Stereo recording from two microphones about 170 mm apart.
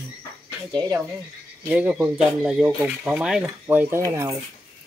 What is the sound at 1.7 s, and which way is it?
Speech, 5° right (ahead or behind).